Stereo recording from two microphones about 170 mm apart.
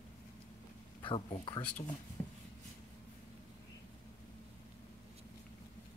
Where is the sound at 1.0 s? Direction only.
30° left (ahead or behind).